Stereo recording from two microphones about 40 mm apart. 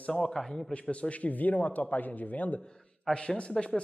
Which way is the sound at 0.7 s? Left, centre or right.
Left.